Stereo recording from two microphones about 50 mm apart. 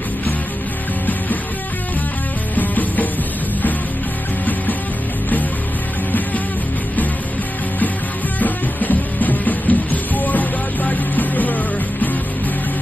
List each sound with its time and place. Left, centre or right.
2.5 s music: left
8.4 s music: left